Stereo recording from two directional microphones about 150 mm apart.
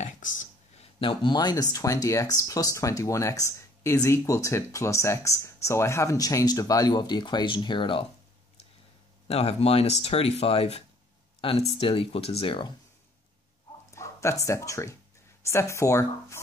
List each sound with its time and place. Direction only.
0.0 s a sound: 55° left (ahead or behind)
0.9 s speech: 35° left (ahead or behind)
9.3 s speech: 40° left (ahead or behind)
13.9 s speech: 20° left (ahead or behind)